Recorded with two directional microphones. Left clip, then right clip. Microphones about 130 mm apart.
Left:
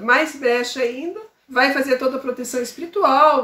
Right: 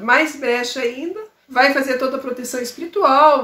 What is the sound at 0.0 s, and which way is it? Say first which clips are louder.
Speech: right 1 dB; 20° right (ahead or behind).